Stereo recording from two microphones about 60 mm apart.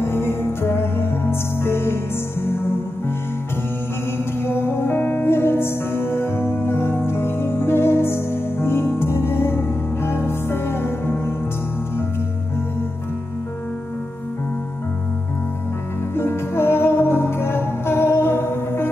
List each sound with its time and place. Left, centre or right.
0.0 s music: left
4.4 s music: left
16.2 s music: left